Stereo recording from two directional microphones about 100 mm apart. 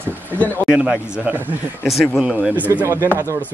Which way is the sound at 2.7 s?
30° right (ahead or behind).